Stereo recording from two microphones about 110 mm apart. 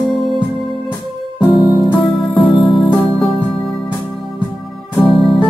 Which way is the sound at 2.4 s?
Centre (ahead or behind).